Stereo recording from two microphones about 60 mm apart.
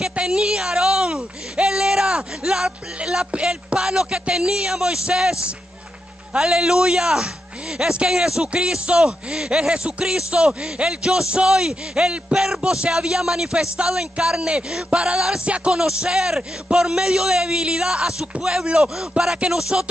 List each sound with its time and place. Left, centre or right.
0.1 s a woman's voice: centre